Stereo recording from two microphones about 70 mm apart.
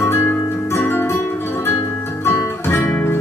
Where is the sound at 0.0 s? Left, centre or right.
Left.